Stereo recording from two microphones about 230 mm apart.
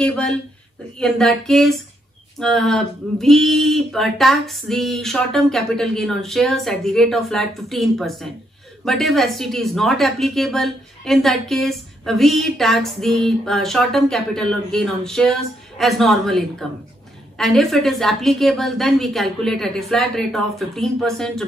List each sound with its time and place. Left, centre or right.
0.0 s a woman's voice: centre